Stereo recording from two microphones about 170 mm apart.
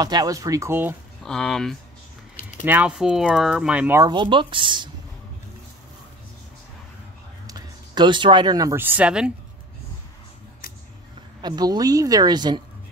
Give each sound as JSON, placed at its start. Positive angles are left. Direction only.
{"t": 0.0, "sound": "speech", "side_deg": -25}
{"t": 1.2, "sound": "speech", "side_deg": 5}
{"t": 2.6, "sound": "speech", "side_deg": -10}
{"t": 4.0, "sound": "speech", "side_deg": -25}
{"t": 7.4, "sound": "speech", "side_deg": -25}
{"t": 11.4, "sound": "speech", "side_deg": -25}